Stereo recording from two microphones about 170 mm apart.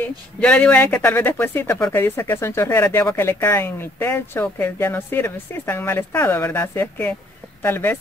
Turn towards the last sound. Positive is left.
turn(degrees=10)  # may be behind; listen again after turning